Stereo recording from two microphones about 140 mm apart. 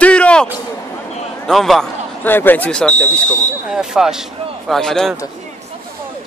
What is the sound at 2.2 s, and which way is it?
Speech, 15° left (ahead or behind).